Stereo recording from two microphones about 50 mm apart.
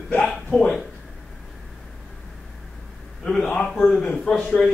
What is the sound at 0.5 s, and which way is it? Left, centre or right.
Speech, centre.